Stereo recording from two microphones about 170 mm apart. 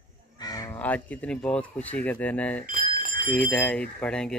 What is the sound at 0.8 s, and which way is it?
A man's voice, 10° left (ahead or behind).